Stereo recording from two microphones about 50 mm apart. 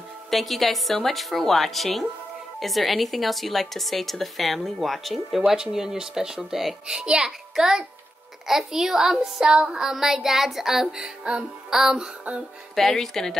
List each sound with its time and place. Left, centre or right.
0.3 s speech: centre
10.9 s speech: centre
12.7 s speech: centre